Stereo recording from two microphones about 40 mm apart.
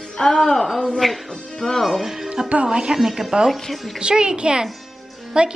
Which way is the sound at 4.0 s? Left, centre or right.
Right.